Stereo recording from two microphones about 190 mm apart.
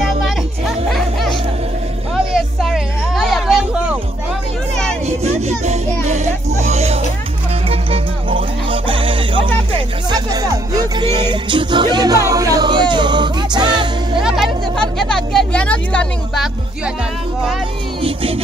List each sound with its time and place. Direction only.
0.0 s music: centre (ahead or behind)
2.6 s a sound: centre (ahead or behind)
5.0 s music: 35° right (ahead or behind)
14.2 s vehicle: centre (ahead or behind)
18.0 s music: 30° right (ahead or behind)